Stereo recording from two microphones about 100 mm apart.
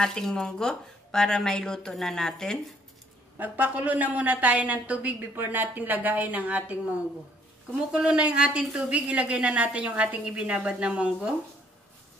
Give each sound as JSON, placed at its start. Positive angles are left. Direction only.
{"t": 0.0, "sound": "a woman's voice", "side_deg": 5}
{"t": 3.3, "sound": "a woman's voice", "side_deg": -15}